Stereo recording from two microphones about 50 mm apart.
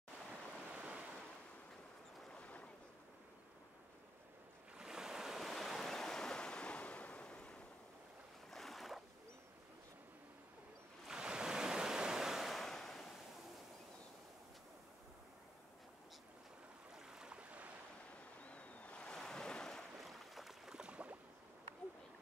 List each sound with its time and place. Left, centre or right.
0.3 s waves: right
2.4 s boat: left
4.7 s waves: centre; by 7.6 s left
8.5 s boat: centre
11.1 s waves: centre
16.9 s boat: centre
18.4 s a sound: left
19.0 s waves: centre
20.0 s boat: centre
20.7 s a sound: right